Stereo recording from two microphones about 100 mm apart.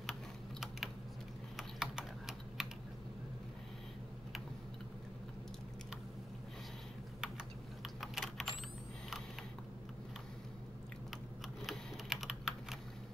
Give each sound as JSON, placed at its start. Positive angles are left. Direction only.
{"t": 1.6, "sound": "typing", "side_deg": -5}
{"t": 7.8, "sound": "typing", "side_deg": 0}
{"t": 11.6, "sound": "typing", "side_deg": 0}